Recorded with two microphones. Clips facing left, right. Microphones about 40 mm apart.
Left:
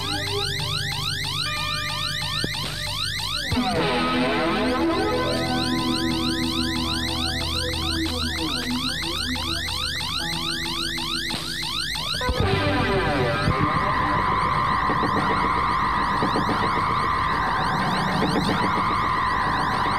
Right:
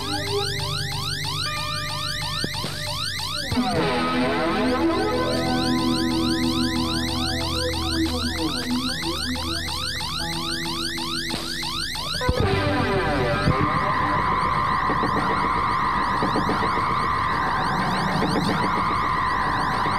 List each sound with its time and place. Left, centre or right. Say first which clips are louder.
3.5 s music: right 1 dB; left
4.6 s music: right 1 dB; left
4.9 s car alarm: even; left
12.3 s music: right 1 dB; left
13.7 s skidding: even; centre
14.4 s siren: even; centre
15.0 s siren: even; left
15.4 s emergency vehicle: even; centre
16.1 s emergency vehicle: even; centre
17.1 s siren: even; centre
17.6 s emergency vehicle: even; left
18.7 s emergency vehicle: even; centre
19.7 s car alarm: even; centre